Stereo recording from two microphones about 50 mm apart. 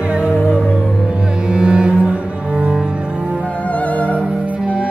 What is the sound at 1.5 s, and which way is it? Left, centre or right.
Music, centre.